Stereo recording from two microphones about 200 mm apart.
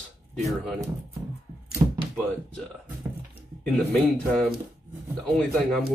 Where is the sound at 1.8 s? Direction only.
20° right (ahead or behind).